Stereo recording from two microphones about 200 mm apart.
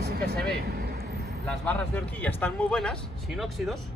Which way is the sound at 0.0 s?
55° right (ahead or behind).